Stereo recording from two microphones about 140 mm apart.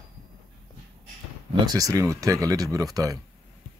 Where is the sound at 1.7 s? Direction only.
25° right (ahead or behind).